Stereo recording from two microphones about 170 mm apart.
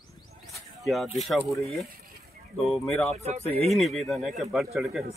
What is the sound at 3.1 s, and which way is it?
Speech, 40° right (ahead or behind).